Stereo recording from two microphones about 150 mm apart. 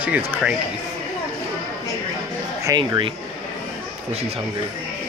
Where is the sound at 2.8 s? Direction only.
35° right (ahead or behind).